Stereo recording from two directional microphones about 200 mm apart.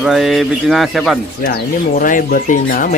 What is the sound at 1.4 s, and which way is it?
Speech, 40° left (ahead or behind).